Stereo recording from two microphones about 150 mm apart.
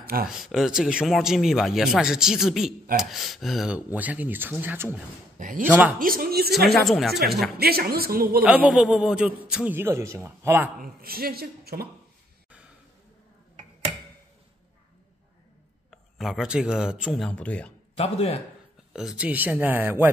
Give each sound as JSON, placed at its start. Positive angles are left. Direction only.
{"t": 0.0, "sound": "speech", "side_deg": -80}
{"t": 0.3, "sound": "a man's voice", "side_deg": 0}
{"t": 5.9, "sound": "speech", "side_deg": -70}
{"t": 6.9, "sound": "speech", "side_deg": 0}
{"t": 7.5, "sound": "a woman's voice", "side_deg": -90}
{"t": 8.5, "sound": "a man's voice", "side_deg": -10}
{"t": 10.8, "sound": "a woman's voice", "side_deg": -80}
{"t": 15.9, "sound": "speech", "side_deg": 0}
{"t": 17.9, "sound": "a man's voice", "side_deg": 40}
{"t": 18.9, "sound": "a man's voice", "side_deg": -5}